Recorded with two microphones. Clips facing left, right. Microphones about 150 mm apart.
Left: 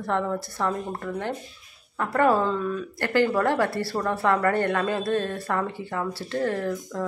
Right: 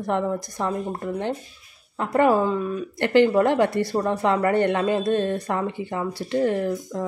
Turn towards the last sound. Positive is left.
turn(degrees=-20)  # may be behind; listen again after turning